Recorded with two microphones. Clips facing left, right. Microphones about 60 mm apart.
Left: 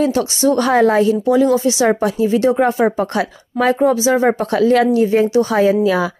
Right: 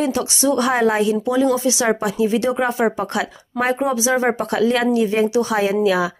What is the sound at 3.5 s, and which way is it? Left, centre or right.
Speech, right.